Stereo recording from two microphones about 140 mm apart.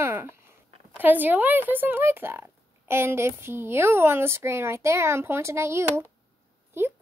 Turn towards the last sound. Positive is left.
turn(degrees=-15)  # may be behind; listen again after turning